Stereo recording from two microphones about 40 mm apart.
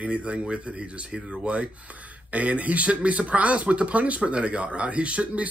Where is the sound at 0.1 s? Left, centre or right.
Right.